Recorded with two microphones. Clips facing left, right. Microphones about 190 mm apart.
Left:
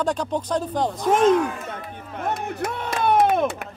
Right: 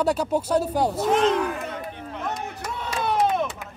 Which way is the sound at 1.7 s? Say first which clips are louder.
Right 1 dB; 55° left (ahead or behind).